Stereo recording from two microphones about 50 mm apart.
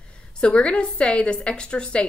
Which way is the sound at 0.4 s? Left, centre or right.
Centre.